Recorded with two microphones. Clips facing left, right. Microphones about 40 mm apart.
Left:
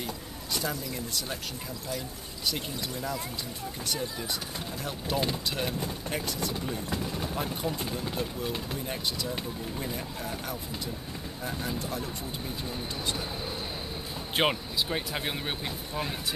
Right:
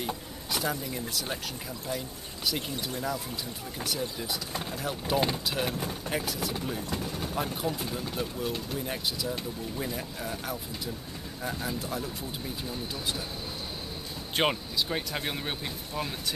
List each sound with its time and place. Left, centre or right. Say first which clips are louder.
0.5 s speech: right 2 dB; centre
3.8 s speech: right 1 dB; centre
14.3 s speech: even; centre